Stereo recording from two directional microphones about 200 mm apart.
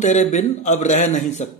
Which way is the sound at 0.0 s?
35° left (ahead or behind).